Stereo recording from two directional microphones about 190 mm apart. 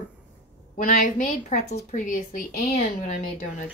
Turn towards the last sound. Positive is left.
turn(degrees=40)  # may be behind; listen again after turning